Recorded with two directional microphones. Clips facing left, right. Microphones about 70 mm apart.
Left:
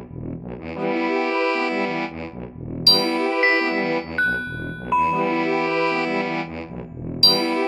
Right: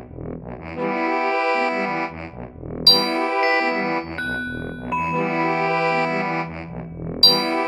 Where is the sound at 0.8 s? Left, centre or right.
Right.